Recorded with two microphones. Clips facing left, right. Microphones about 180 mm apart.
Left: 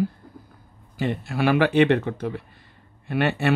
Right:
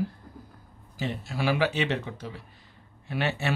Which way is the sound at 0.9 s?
60° left (ahead or behind).